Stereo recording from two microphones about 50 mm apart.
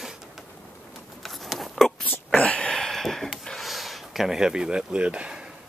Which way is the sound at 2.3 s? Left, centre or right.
Left.